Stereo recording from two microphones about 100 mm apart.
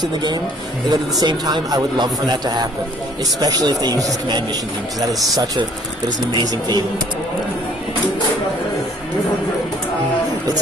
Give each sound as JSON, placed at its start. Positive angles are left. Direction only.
{"t": 0.0, "sound": "speech", "side_deg": -45}
{"t": 6.3, "sound": "speech", "side_deg": -40}